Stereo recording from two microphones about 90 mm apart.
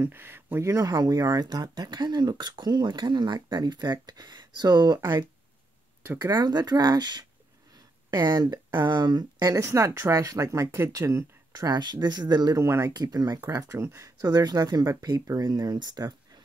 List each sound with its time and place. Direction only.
0.0 s speech: 25° right (ahead or behind); by 5.0 s 50° right (ahead or behind)
6.2 s speech: 50° right (ahead or behind)
12.6 s speech: 35° right (ahead or behind)
12.9 s speech: 45° right (ahead or behind)
13.7 s speech: 30° right (ahead or behind); by 16.2 s 50° right (ahead or behind)